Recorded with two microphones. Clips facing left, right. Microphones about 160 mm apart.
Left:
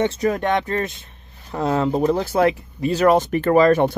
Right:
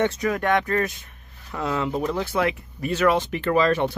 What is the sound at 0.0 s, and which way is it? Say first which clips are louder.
Speech: left 3 dB; 30° left (ahead or behind).